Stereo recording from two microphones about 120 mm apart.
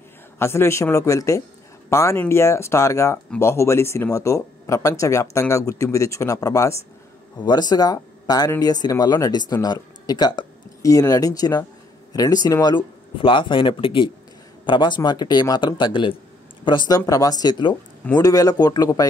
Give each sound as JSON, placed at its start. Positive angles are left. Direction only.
{"t": 0.4, "sound": "speech", "side_deg": 20}
{"t": 7.3, "sound": "speech", "side_deg": 35}